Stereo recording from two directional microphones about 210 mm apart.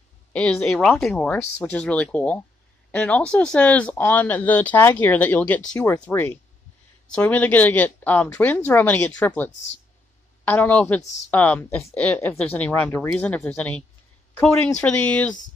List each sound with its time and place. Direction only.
0.3 s a woman's voice: 5° left (ahead or behind)